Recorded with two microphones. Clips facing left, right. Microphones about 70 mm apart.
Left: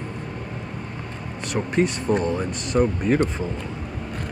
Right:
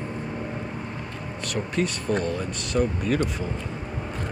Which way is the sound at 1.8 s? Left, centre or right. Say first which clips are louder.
Left 4 dB; left.